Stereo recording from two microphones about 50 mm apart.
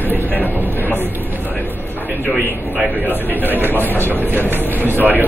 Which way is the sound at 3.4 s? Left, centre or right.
Right.